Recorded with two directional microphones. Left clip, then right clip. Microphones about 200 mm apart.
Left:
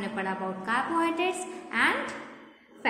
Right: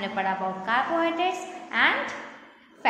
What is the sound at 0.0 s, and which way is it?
A woman's voice, 10° left (ahead or behind).